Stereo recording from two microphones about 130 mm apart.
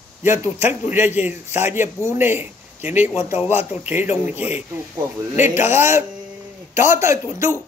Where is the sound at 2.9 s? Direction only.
60° left (ahead or behind).